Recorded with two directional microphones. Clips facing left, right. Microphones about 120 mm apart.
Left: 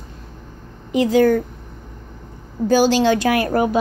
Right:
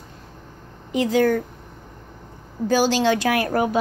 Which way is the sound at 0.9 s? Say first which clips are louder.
Left 4 dB; 10° left (ahead or behind).